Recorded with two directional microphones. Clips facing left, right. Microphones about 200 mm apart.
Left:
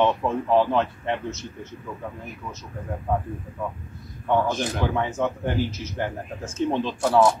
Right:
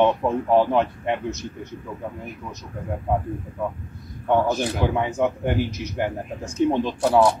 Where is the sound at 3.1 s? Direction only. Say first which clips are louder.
Right 2 dB; 15° right (ahead or behind).